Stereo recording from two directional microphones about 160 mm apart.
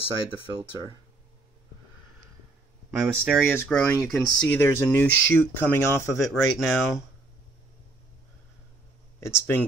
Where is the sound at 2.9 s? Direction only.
10° right (ahead or behind).